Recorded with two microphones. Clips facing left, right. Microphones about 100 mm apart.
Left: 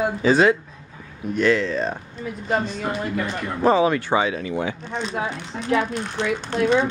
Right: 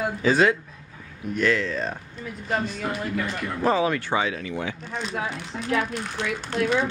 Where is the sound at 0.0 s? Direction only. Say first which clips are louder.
Left 4 dB; 25° left (ahead or behind).